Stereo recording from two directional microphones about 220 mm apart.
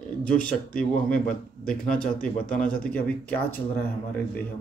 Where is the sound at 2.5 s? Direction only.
40° left (ahead or behind).